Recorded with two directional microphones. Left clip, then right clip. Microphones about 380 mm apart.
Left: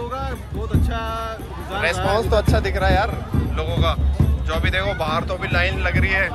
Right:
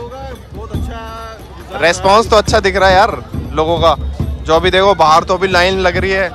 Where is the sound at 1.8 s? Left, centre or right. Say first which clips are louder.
Right 11 dB; centre.